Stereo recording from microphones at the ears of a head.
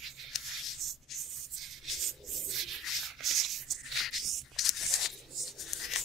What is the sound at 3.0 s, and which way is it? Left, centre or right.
Rub, right.